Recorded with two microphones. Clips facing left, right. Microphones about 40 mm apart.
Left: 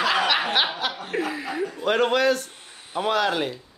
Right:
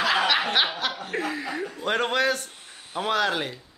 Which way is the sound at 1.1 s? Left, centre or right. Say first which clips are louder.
Left 2 dB; centre.